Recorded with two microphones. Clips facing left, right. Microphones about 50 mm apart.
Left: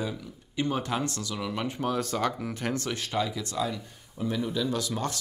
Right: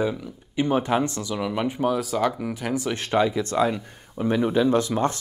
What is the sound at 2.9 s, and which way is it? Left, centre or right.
Speech, right.